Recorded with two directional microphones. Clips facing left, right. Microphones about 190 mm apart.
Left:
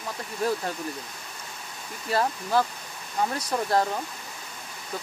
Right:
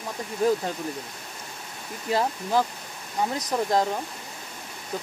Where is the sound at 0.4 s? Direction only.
15° right (ahead or behind).